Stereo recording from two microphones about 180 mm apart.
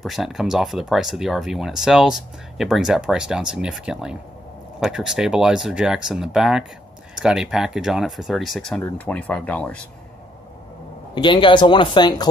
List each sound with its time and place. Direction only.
0.0 s speech: centre (ahead or behind)
11.1 s speech: 25° left (ahead or behind)